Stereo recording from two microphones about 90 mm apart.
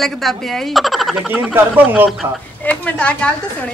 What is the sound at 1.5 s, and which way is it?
Speech, 15° right (ahead or behind).